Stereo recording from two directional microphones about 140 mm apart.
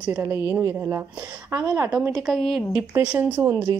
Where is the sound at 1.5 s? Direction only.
20° right (ahead or behind).